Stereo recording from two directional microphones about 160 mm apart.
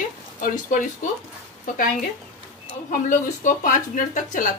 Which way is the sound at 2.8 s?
55° left (ahead or behind).